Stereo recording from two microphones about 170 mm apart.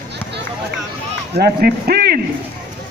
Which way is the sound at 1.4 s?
65° right (ahead or behind).